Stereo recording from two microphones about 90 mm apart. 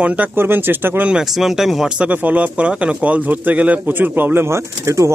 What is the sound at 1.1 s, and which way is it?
Speech, 5° right (ahead or behind).